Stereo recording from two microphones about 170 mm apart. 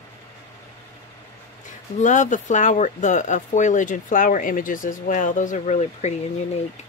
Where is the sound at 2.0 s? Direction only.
45° left (ahead or behind).